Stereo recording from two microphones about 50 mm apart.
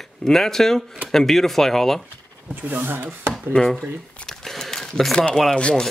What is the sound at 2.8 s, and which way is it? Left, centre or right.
Speech, right.